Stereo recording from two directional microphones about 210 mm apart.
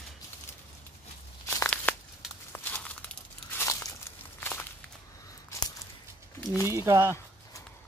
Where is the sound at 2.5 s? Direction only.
5° left (ahead or behind).